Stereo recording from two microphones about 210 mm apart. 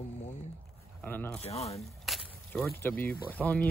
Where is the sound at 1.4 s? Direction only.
30° left (ahead or behind).